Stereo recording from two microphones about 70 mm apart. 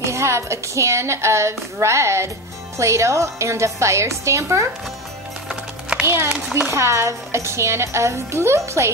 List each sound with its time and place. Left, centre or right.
0.1 s a woman's voice: right
5.5 s music: centre
6.0 s a woman's voice: right